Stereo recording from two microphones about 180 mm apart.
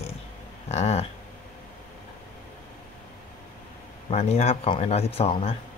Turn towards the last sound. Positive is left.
turn(degrees=35)  # may be behind; listen again after turning